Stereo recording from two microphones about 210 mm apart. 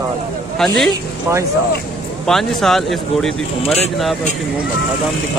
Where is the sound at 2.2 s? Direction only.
Centre (ahead or behind).